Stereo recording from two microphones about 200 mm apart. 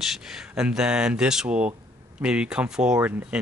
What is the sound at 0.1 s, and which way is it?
Speech, 5° right (ahead or behind).